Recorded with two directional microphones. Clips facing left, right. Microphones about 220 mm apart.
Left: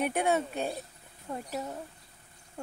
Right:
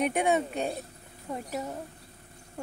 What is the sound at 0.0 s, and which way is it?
Speech, 10° right (ahead or behind).